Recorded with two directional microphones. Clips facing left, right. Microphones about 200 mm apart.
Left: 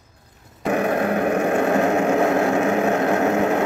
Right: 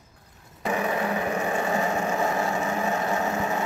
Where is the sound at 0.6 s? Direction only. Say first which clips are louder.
Left 6 dB; 60° left (ahead or behind).